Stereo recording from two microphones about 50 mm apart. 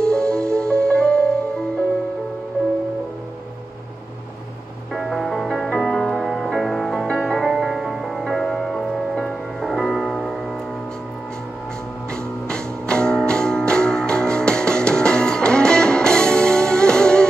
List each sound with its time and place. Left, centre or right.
0.0 s music: centre
4.9 s music: centre
7.4 s music: centre
12.1 s music: centre